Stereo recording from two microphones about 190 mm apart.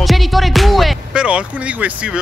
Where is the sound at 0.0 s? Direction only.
Centre (ahead or behind).